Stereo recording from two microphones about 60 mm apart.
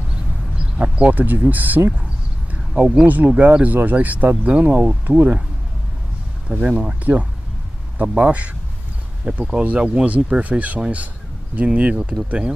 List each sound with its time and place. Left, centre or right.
0.6 s speech: centre
2.5 s a sound: right
3.1 s speech: right
6.5 s speech: right